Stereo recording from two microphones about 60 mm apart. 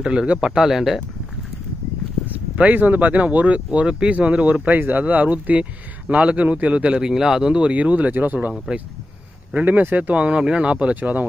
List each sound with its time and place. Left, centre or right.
0.0 s speech: centre
2.2 s speech: right
4.7 s speech: right